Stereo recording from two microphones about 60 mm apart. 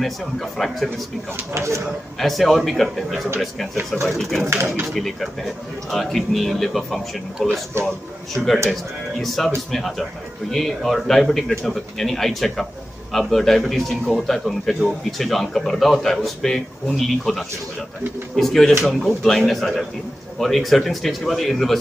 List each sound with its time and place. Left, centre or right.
0.0 s speech: centre
1.5 s speech: right
2.1 s speech: centre
7.7 s a man's voice: right
8.4 s a man's voice: centre
9.2 s a man's voice: centre